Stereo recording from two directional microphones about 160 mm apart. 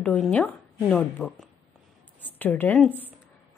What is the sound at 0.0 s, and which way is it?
A woman's voice, 5° left (ahead or behind).